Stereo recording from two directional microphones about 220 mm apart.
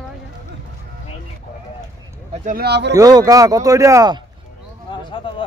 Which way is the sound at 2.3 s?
35° right (ahead or behind).